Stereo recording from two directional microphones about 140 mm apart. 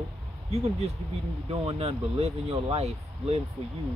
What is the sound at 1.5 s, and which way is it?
Speech, 45° right (ahead or behind).